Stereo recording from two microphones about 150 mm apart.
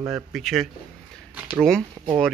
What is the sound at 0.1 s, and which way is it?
Speech, centre (ahead or behind).